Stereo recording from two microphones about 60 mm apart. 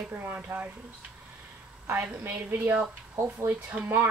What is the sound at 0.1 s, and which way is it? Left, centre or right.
Speech, right.